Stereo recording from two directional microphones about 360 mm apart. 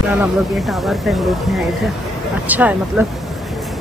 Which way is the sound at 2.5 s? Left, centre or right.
Centre.